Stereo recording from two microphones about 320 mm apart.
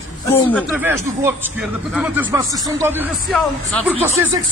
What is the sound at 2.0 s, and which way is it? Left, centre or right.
Speech, centre.